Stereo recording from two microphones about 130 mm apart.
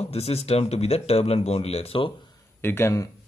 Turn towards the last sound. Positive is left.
turn(degrees=20)  # may be behind; listen again after turning